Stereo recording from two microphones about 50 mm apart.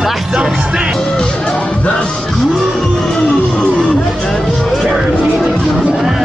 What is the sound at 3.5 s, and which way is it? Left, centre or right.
Music, left.